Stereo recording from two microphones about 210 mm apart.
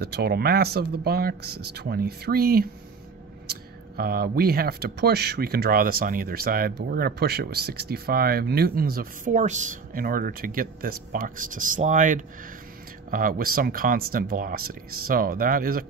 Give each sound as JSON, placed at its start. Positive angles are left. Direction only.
{"t": 0.0, "sound": "speech", "side_deg": -50}